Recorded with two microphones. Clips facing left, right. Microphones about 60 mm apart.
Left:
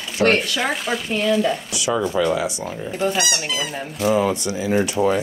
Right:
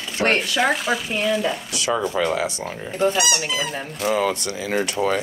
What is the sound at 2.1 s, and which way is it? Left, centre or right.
Speech, right.